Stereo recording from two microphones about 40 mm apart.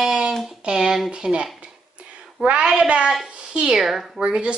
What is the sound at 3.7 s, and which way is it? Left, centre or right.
Speech, centre.